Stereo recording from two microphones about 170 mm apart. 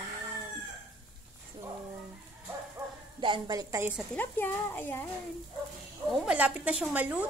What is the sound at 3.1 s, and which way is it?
Speech, 30° right (ahead or behind).